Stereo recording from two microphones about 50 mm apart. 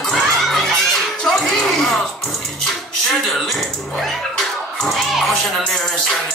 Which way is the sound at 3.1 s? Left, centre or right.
Centre.